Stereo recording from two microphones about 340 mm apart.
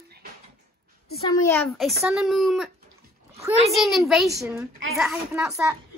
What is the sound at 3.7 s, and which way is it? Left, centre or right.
A child's voice, centre.